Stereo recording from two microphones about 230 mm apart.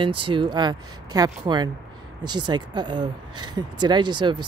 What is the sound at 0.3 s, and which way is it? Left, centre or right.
Speech, centre.